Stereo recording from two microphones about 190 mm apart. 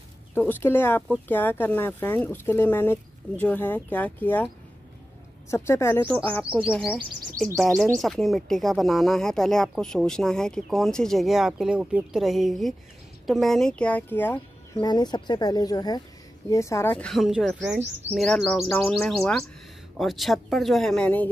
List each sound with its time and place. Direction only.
0.3 s speech: 10° left (ahead or behind)
5.5 s speech: 15° left (ahead or behind)